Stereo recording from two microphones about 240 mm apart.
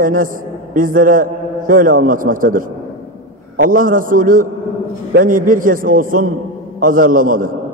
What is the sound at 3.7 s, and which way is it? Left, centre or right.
A man's voice, right.